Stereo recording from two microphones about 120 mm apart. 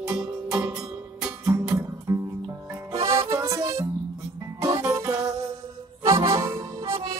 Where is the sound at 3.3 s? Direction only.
25° right (ahead or behind).